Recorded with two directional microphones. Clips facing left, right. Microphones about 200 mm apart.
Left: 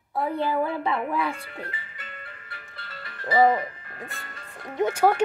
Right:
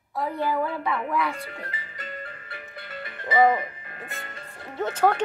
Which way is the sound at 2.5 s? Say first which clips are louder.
Right 6 dB; 20° right (ahead or behind).